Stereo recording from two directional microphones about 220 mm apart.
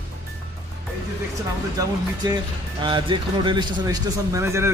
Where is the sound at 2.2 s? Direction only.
20° right (ahead or behind).